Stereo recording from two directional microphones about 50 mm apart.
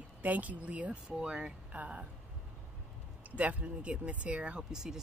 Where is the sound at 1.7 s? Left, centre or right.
Right.